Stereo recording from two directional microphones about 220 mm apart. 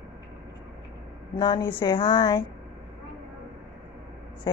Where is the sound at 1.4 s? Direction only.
20° left (ahead or behind).